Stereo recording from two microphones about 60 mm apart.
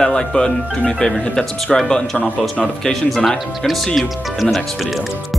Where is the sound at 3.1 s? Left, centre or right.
Centre.